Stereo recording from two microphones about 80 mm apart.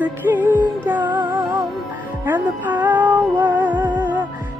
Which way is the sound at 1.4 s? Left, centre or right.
Right.